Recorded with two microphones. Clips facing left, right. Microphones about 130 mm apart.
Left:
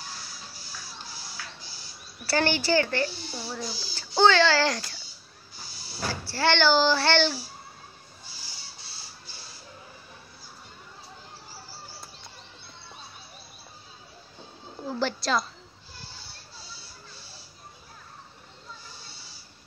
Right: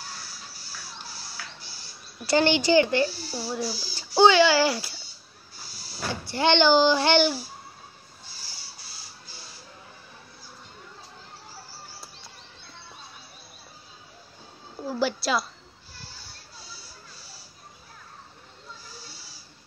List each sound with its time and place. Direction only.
2.2 s speech: 20° right (ahead or behind)
3.3 s speech: 5° right (ahead or behind)
6.2 s speech: 20° right (ahead or behind)
14.9 s a sound: 10° right (ahead or behind)